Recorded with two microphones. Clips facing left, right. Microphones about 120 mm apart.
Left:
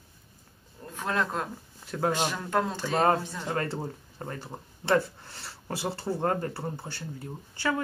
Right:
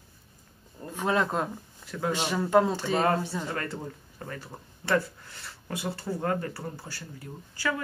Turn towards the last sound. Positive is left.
turn(degrees=25)  # may be behind; listen again after turning